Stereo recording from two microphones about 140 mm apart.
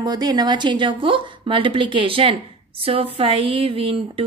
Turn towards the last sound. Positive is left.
turn(degrees=-40)  # may be behind; listen again after turning